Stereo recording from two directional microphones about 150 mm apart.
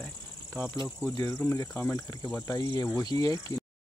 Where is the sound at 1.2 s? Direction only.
20° left (ahead or behind).